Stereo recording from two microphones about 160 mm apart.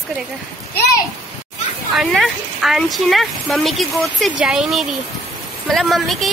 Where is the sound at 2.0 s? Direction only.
Centre (ahead or behind).